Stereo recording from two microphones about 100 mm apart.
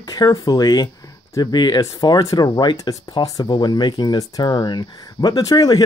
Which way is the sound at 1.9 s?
35° left (ahead or behind).